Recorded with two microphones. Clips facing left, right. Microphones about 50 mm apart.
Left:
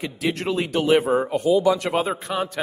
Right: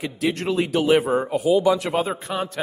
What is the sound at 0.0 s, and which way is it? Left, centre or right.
A man's voice, centre.